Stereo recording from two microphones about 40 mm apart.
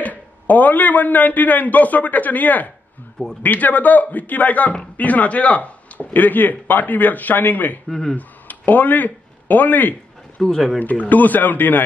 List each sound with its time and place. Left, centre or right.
0.0 s a man's voice: left
7.9 s speech: centre
8.2 s a sound: left
10.4 s speech: centre
10.8 s speech: left